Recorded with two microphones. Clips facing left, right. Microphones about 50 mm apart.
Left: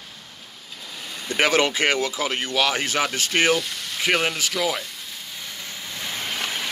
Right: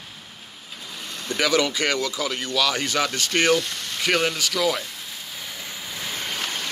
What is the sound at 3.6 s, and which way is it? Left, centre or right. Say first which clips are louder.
Vehicle: even; centre.